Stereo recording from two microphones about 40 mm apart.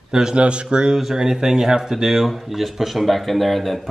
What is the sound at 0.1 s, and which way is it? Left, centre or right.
Speech, right.